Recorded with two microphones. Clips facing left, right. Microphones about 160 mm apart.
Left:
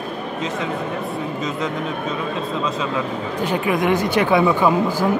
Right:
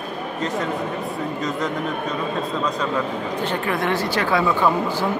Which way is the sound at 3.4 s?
10° left (ahead or behind).